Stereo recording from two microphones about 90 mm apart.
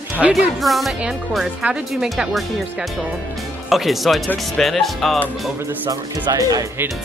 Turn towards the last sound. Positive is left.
turn(degrees=-45)  # may be behind; listen again after turning